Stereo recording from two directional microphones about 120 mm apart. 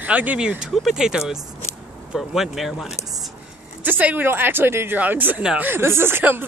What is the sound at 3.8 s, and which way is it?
Speech, 15° right (ahead or behind).